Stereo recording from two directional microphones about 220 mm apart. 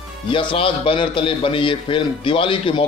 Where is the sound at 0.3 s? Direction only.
20° left (ahead or behind).